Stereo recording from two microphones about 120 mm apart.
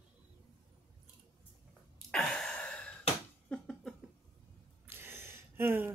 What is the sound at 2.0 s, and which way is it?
Gasp, 5° left (ahead or behind).